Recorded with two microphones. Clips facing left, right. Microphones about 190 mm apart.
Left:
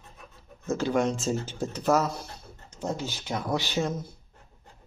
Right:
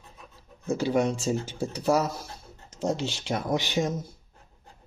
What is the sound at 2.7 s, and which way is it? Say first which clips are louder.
Speech: right 4 dB; 90° right.